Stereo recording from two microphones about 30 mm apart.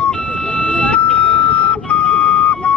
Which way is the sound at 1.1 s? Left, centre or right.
Left.